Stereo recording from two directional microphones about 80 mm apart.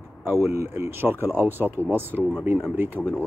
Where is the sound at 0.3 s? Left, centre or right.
Right.